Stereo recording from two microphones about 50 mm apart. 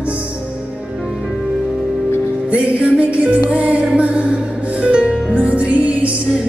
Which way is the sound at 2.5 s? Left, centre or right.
Right.